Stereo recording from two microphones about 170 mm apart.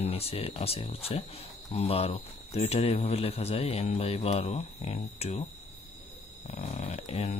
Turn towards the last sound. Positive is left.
turn(degrees=40)  # may be behind; listen again after turning